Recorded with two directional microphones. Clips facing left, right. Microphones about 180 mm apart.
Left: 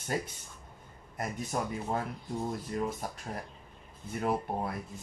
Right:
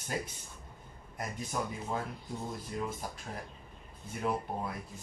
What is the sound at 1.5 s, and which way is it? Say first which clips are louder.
Speech: left 2 dB; 45° left (ahead or behind).